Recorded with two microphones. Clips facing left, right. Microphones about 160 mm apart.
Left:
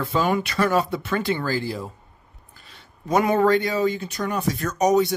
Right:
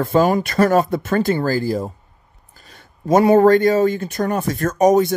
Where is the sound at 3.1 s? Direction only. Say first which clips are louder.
Right 7 dB; 45° right (ahead or behind).